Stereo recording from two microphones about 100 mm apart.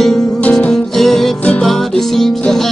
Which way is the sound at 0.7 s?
5° left (ahead or behind).